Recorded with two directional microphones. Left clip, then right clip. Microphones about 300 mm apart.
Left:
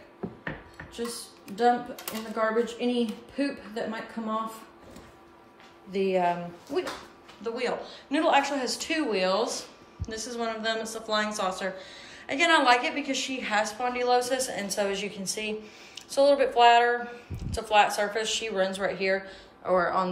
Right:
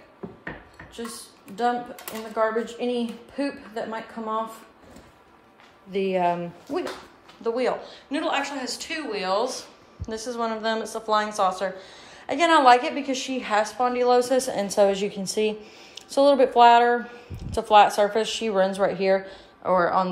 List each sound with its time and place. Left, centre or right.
0.9 s a woman's voice: centre
5.9 s speech: right
7.4 s a woman's voice: centre